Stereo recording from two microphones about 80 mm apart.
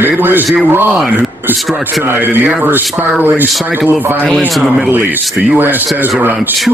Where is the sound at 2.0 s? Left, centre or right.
Right.